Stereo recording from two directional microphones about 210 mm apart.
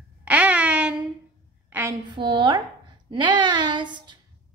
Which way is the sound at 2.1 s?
20° right (ahead or behind).